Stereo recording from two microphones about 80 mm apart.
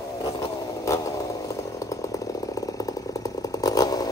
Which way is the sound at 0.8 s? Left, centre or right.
Left.